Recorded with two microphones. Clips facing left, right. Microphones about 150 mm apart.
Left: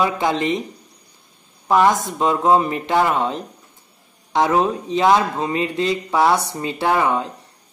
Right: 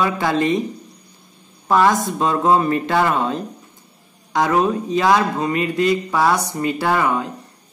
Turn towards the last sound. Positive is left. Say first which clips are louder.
# even
turn(degrees=25)  # may be behind; listen again after turning